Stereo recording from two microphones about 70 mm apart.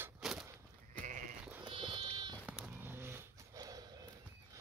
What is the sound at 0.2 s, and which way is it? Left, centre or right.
Walk, centre.